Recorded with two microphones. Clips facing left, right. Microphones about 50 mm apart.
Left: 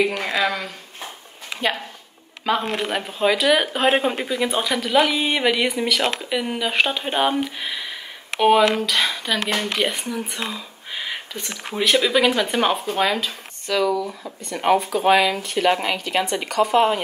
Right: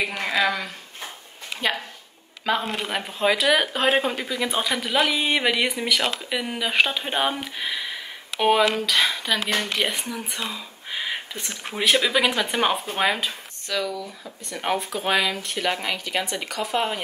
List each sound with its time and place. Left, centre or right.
0.2 s speech: centre
2.6 s speech: left
2.9 s speech: centre
4.5 s speech: centre
10.5 s a sound: centre
11.3 s speech: centre
12.8 s speech: centre
13.7 s speech: centre